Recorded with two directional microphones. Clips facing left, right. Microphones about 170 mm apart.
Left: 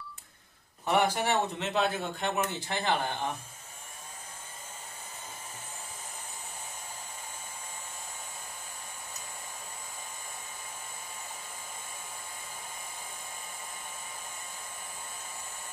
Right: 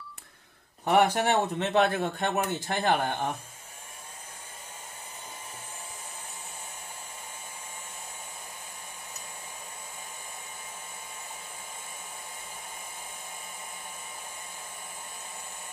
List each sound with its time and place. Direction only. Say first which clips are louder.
0.8 s a man's voice: right 4 dB; 55° right (ahead or behind)